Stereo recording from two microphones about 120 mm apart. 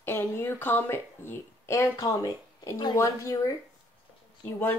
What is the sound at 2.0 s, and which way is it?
Speech, 30° left (ahead or behind).